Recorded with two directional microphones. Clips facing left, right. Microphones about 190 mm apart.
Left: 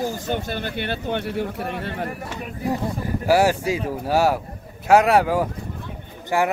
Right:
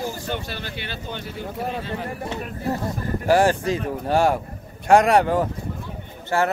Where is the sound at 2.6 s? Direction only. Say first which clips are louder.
Left 2 dB; 10° left (ahead or behind).